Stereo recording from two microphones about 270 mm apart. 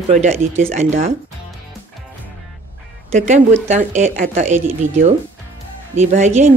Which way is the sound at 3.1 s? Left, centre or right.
Right.